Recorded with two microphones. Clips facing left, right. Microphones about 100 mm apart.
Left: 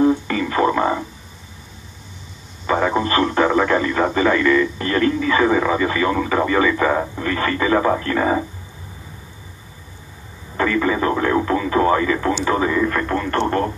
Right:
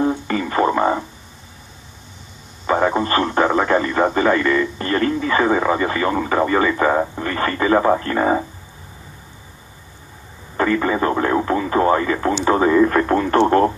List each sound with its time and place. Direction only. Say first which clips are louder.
0.0 s radio: left 3 dB; 25° right (ahead or behind)
2.6 s radio: right 1 dB; 20° right (ahead or behind)
3.0 s speech: even; 30° right (ahead or behind)
10.6 s speech: right 1 dB; 25° right (ahead or behind)
12.8 s speech: right 4 dB; 15° right (ahead or behind)